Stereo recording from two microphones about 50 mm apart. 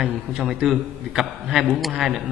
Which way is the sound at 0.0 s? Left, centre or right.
Centre.